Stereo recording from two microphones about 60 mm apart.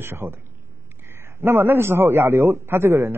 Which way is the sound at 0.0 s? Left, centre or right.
Right.